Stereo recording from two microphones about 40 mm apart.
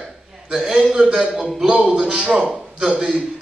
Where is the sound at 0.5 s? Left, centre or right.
Right.